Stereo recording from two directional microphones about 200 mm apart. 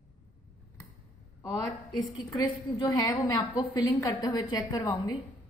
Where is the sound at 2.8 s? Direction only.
20° left (ahead or behind).